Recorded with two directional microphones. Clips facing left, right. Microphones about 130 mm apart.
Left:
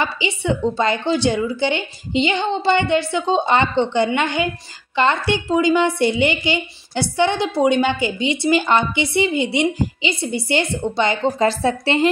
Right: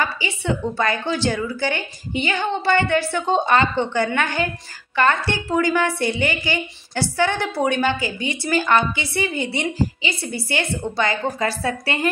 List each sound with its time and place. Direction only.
0.0 s speech: 20° left (ahead or behind)